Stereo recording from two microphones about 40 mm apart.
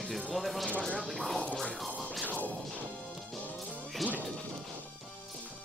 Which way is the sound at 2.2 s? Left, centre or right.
Left.